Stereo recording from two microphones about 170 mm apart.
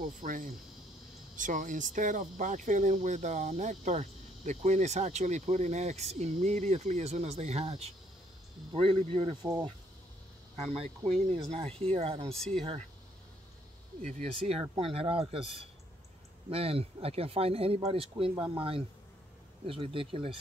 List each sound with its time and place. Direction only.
0.0 s speech: 50° right (ahead or behind); by 9.8 s 25° right (ahead or behind)
10.7 s speech: 35° right (ahead or behind)
12.3 s speech: 5° left (ahead or behind)
14.0 s speech: 40° right (ahead or behind)